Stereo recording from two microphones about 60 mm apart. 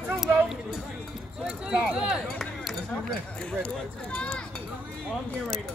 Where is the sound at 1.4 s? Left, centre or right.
Centre.